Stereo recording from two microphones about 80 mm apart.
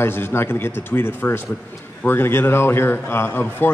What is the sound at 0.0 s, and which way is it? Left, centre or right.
A man's voice, left.